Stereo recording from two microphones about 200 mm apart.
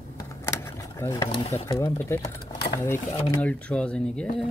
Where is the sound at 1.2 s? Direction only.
30° left (ahead or behind).